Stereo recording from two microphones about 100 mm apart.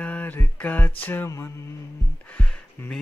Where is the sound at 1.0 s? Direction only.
20° left (ahead or behind).